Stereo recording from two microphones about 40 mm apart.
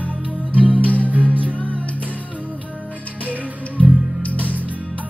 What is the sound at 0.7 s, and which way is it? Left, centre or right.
Music, left.